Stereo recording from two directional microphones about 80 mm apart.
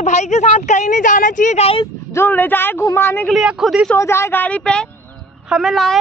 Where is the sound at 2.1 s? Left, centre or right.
Left.